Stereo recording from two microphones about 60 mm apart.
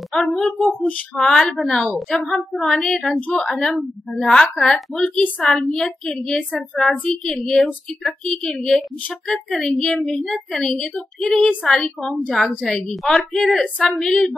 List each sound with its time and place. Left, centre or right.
0.1 s a woman's voice: centre
12.9 s a woman's voice: centre
13.6 s speech: centre
13.9 s a woman's voice: centre